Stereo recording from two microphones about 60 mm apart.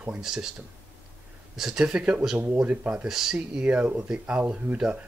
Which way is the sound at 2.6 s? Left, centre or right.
Right.